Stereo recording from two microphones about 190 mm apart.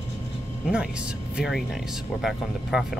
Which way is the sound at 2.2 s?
Centre (ahead or behind).